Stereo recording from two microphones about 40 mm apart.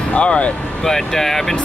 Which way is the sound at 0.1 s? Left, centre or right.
Left.